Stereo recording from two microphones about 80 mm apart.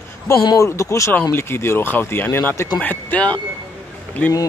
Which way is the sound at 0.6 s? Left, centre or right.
Left.